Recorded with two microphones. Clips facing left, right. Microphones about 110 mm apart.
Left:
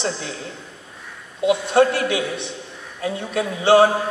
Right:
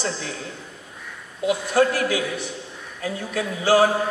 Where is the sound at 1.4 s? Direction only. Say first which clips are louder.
Left 3 dB; 25° left (ahead or behind).